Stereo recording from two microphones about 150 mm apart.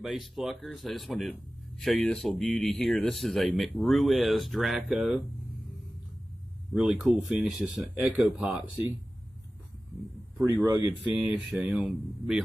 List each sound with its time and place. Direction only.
0.7 s speech: centre (ahead or behind)
6.7 s speech: 5° right (ahead or behind)
10.4 s speech: 15° right (ahead or behind)